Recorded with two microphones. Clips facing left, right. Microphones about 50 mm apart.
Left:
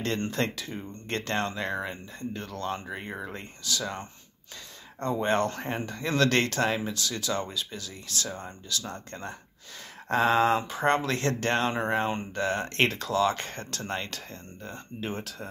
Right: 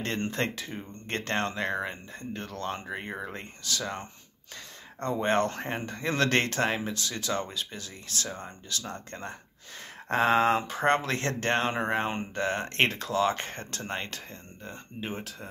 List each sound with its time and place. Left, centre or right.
0.0 s speech: right